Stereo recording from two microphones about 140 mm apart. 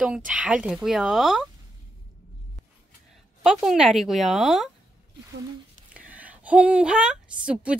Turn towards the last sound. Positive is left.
turn(degrees=-10)  # may be behind; listen again after turning